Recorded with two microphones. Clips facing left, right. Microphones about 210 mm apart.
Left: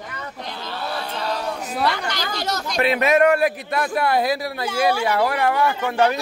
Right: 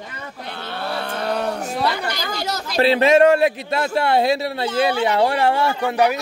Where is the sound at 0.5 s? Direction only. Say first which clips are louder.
Right 3 dB; 60° right (ahead or behind).